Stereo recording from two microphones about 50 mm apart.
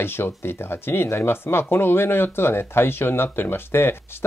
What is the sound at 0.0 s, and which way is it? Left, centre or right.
Speech, left.